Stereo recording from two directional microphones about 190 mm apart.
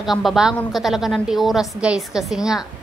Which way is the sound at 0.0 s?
Centre (ahead or behind).